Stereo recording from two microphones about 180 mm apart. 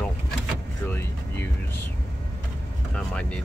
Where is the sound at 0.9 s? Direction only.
15° left (ahead or behind).